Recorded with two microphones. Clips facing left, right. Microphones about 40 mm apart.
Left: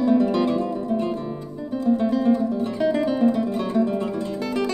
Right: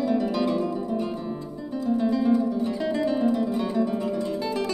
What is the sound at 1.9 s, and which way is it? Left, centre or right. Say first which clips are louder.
Music: left 3 dB; left.